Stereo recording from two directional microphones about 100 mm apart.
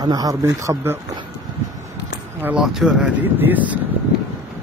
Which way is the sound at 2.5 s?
5° right (ahead or behind).